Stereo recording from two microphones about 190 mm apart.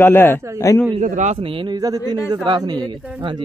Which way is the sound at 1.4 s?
25° right (ahead or behind).